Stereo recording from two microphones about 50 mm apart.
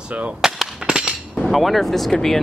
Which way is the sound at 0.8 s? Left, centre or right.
Centre.